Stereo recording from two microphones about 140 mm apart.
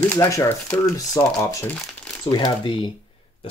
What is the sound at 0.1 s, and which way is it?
Speech, 20° left (ahead or behind).